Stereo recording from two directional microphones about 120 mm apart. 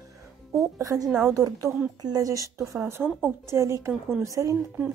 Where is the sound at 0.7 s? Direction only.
30° right (ahead or behind).